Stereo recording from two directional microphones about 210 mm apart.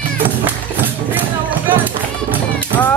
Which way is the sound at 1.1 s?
10° right (ahead or behind).